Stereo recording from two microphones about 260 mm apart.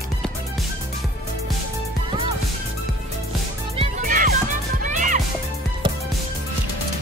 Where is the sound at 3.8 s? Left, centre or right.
Right.